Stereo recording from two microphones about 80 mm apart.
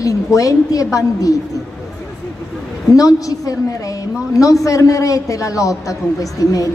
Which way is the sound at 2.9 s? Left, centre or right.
Left.